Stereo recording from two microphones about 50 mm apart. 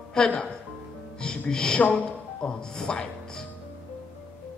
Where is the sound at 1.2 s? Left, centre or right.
Centre.